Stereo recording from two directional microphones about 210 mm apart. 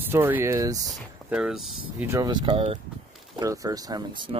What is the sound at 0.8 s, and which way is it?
Speech, 5° right (ahead or behind).